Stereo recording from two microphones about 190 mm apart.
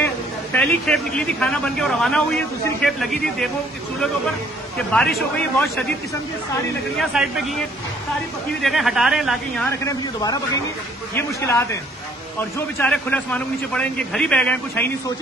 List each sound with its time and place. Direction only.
0.0 s a man's voice: 5° left (ahead or behind)
4.7 s speech: 5° left (ahead or behind)
7.0 s speech: centre (ahead or behind)
8.6 s speech: centre (ahead or behind)
9.7 s a man's voice: 20° left (ahead or behind)